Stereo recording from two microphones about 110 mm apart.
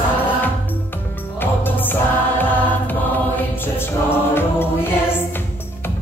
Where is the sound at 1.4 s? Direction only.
20° left (ahead or behind).